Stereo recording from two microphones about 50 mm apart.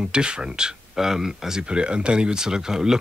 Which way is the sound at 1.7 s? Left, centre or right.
Centre.